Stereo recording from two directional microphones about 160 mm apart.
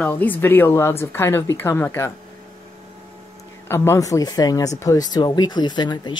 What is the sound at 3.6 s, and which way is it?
Speech, 15° left (ahead or behind).